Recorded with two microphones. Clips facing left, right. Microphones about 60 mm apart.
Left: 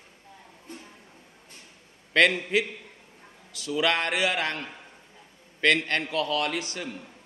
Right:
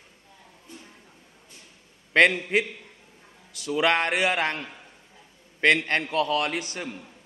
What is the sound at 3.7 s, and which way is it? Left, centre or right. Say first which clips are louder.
Speech: right 2 dB; right.